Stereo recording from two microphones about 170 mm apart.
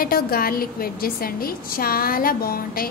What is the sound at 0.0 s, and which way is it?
A woman's voice, 60° left (ahead or behind).